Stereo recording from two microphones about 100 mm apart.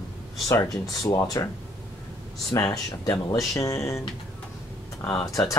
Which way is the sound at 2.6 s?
35° left (ahead or behind).